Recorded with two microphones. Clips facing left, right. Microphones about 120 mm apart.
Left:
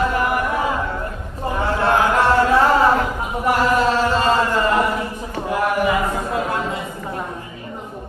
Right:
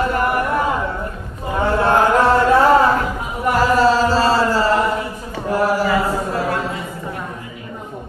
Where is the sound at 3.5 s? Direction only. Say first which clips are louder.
Right 3 dB; 40° right (ahead or behind).